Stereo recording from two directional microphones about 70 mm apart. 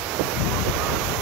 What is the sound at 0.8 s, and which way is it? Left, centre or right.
Waves, centre.